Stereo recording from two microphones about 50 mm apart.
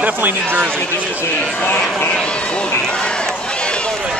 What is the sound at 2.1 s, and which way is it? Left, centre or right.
Speech, left.